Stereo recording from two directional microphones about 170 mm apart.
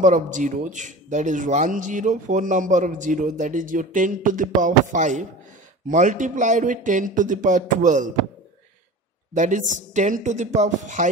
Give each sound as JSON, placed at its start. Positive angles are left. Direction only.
{"t": 0.0, "sound": "speech", "side_deg": -45}
{"t": 9.3, "sound": "speech", "side_deg": -45}